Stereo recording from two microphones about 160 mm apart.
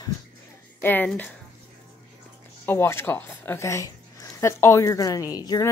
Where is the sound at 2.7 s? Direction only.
15° left (ahead or behind).